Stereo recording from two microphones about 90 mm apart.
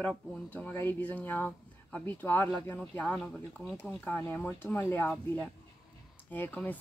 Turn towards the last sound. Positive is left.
turn(degrees=20)  # may be behind; listen again after turning